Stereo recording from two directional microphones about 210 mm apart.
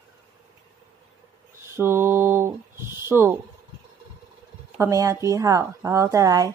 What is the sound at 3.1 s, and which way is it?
Speech, 10° right (ahead or behind).